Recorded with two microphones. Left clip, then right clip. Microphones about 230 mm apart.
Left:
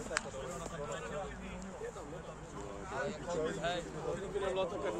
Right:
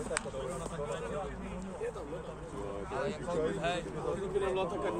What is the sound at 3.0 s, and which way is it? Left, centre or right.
A man's voice, right.